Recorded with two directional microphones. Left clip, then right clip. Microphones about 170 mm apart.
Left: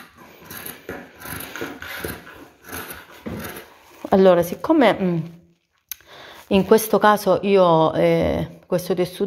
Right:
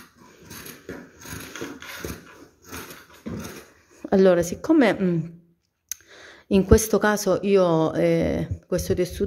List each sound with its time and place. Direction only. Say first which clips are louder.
4.0 s a woman's voice: left 4 dB; 30° right (ahead or behind)